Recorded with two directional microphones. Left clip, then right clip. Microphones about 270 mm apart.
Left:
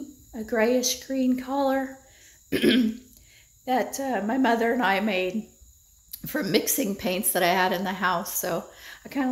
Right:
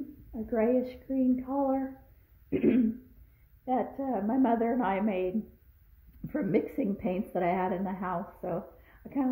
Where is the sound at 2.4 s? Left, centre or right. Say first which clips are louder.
Left 5 dB; left.